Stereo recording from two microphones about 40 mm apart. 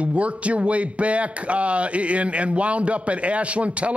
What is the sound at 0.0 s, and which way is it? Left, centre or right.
A man's voice, right.